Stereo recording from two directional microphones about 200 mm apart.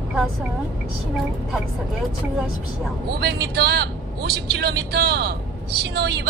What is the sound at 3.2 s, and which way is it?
A woman's voice, 55° right (ahead or behind).